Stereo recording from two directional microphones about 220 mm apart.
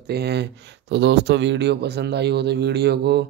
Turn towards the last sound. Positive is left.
turn(degrees=-50)  # may be behind; listen again after turning